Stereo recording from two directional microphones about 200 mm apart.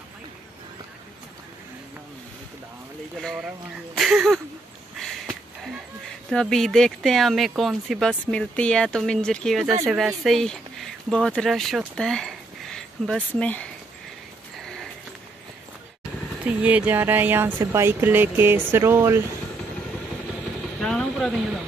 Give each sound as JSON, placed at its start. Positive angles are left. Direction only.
{"t": 3.2, "sound": "speech", "side_deg": 0}
{"t": 5.0, "sound": "a sound", "side_deg": 0}
{"t": 6.3, "sound": "speech", "side_deg": 0}
{"t": 14.6, "sound": "sniff", "side_deg": 0}
{"t": 16.6, "sound": "speech", "side_deg": -10}
{"t": 20.8, "sound": "speech", "side_deg": 0}